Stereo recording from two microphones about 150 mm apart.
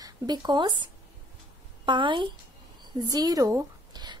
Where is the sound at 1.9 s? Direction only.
35° right (ahead or behind).